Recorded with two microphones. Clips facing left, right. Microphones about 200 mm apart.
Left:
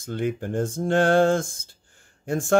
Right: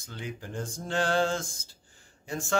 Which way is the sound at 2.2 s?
55° left (ahead or behind).